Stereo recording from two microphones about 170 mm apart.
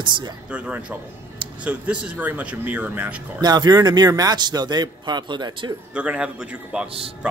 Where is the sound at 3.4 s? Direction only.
25° right (ahead or behind).